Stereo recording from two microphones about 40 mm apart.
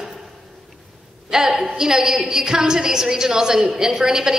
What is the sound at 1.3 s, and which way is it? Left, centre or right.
A man's voice, centre.